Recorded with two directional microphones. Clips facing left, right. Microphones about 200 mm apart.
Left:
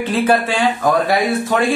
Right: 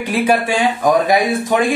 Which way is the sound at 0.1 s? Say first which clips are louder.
Right 1 dB; 15° right (ahead or behind).